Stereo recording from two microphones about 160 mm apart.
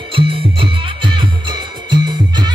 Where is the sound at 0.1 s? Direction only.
35° right (ahead or behind).